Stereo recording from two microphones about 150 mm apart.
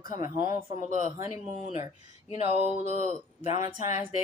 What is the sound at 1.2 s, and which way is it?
Speech, 55° left (ahead or behind).